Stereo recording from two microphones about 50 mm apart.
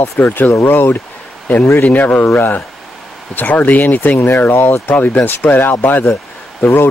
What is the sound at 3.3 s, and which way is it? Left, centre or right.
Speech, left.